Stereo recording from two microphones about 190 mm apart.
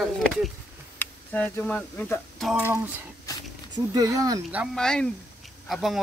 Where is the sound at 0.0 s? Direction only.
Centre (ahead or behind).